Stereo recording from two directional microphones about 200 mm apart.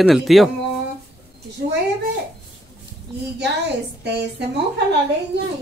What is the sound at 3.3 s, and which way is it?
A woman's voice, 60° right (ahead or behind).